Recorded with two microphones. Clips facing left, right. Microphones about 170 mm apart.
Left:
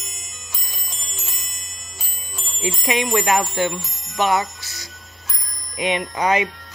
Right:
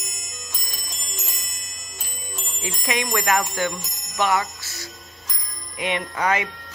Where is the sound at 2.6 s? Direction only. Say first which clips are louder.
Left 5 dB; 20° left (ahead or behind).